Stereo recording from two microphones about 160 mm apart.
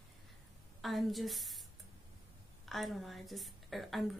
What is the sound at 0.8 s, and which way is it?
Speech, centre (ahead or behind).